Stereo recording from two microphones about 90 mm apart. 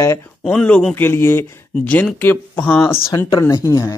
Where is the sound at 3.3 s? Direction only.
40° left (ahead or behind).